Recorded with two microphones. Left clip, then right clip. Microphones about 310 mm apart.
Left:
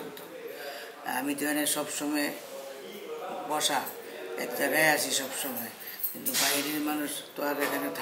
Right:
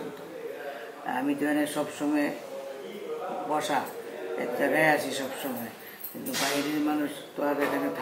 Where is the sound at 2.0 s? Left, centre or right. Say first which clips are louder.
Right 6 dB; centre.